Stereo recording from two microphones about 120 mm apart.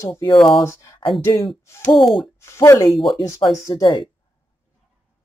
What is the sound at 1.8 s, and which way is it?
Speech, centre (ahead or behind).